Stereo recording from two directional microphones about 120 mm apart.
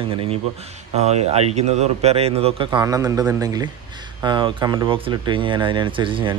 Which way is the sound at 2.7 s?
35° right (ahead or behind).